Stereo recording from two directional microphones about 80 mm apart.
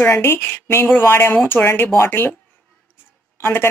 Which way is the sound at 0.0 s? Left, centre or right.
Left.